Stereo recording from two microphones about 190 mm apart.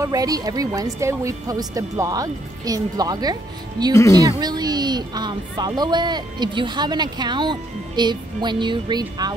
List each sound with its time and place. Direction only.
0.0 s a woman's voice: 20° right (ahead or behind)